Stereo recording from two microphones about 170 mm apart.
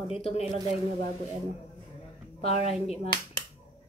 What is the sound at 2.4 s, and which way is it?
Speech, 35° left (ahead or behind).